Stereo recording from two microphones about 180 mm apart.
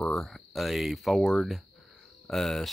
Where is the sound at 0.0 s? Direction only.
Centre (ahead or behind).